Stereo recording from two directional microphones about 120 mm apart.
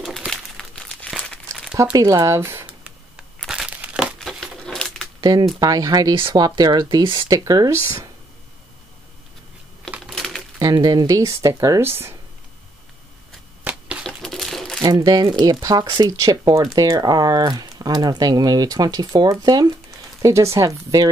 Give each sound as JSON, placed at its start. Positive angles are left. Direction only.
{"t": 0.3, "sound": "crumpling", "side_deg": 5}
{"t": 1.9, "sound": "a sound", "side_deg": -30}
{"t": 3.4, "sound": "crumpling", "side_deg": -5}
{"t": 4.2, "sound": "a sound", "side_deg": 5}
{"t": 5.2, "sound": "speech", "side_deg": -35}
{"t": 6.1, "sound": "speech", "side_deg": -45}
{"t": 6.4, "sound": "speech", "side_deg": -35}
{"t": 9.8, "sound": "typing", "side_deg": -5}
{"t": 10.6, "sound": "speech", "side_deg": -35}
{"t": 13.7, "sound": "a sound", "side_deg": -10}
{"t": 14.0, "sound": "crumpling", "side_deg": 5}
{"t": 14.8, "sound": "speech", "side_deg": -30}